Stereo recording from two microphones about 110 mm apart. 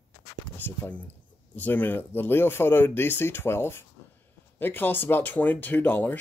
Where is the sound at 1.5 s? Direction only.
15° left (ahead or behind).